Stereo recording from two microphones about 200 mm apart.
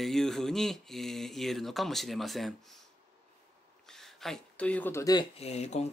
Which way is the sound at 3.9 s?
Centre (ahead or behind).